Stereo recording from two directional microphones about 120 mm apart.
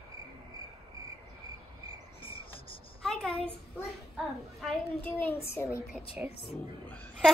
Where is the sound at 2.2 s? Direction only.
50° left (ahead or behind).